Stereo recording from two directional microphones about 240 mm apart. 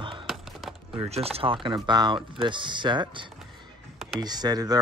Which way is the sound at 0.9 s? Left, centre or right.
Right.